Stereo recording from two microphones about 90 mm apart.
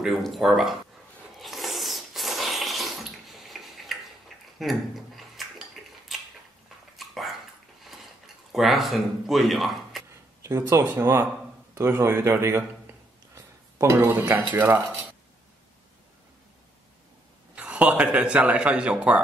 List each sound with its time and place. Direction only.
0.0 s speech: centre (ahead or behind)
1.4 s a sound: centre (ahead or behind)
7.0 s dog: centre (ahead or behind)
8.5 s speech: centre (ahead or behind)
10.0 s speech: 30° right (ahead or behind)
17.6 s a man's voice: 15° right (ahead or behind)